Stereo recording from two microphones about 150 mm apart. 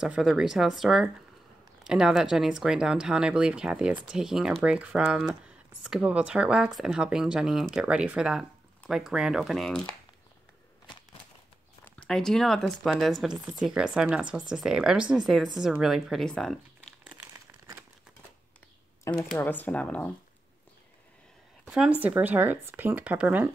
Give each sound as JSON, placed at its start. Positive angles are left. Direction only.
{"t": 0.0, "sound": "speech", "side_deg": -5}
{"t": 11.8, "sound": "speech", "side_deg": 5}
{"t": 19.1, "sound": "speech", "side_deg": 20}
{"t": 21.6, "sound": "speech", "side_deg": -5}